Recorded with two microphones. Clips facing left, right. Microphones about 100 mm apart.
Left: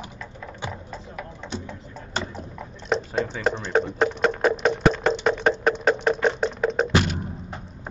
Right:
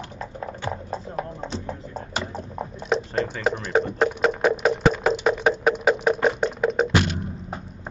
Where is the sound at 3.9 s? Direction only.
5° right (ahead or behind).